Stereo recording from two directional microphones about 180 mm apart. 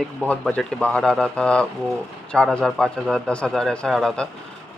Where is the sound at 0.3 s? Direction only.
5° left (ahead or behind).